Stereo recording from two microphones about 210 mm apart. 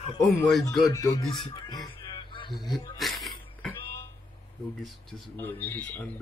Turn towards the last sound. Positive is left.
turn(degrees=10)  # may be behind; listen again after turning